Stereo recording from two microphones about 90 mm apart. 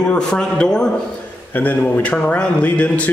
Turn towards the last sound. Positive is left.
turn(degrees=15)  # may be behind; listen again after turning